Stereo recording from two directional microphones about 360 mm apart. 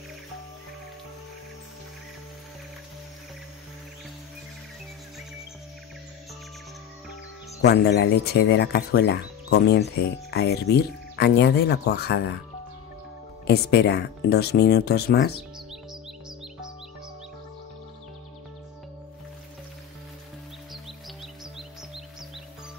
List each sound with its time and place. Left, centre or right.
7.6 s speech: left
13.5 s speech: left